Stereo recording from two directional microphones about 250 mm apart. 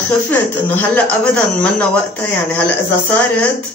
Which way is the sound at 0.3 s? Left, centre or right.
Centre.